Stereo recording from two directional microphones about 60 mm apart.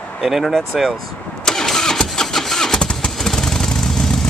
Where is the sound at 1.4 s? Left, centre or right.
Centre.